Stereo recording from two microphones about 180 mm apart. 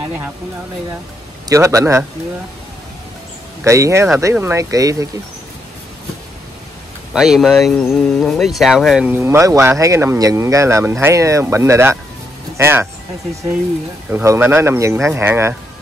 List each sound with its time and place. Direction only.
1.5 s speech: 20° right (ahead or behind)
3.6 s speech: 15° right (ahead or behind)
7.2 s speech: centre (ahead or behind)
14.1 s speech: 15° right (ahead or behind)